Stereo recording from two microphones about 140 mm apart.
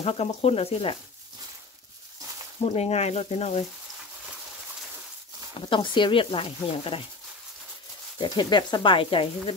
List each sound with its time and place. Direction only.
0.0 s speech: 45° left (ahead or behind)
2.6 s speech: 50° left (ahead or behind)
5.7 s speech: 35° left (ahead or behind)
8.2 s speech: 30° left (ahead or behind)